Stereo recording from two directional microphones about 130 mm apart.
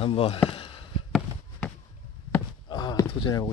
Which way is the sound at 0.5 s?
45° left (ahead or behind).